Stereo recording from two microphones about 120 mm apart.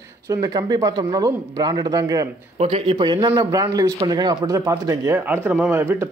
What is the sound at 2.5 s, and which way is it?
Speech, 55° right (ahead or behind).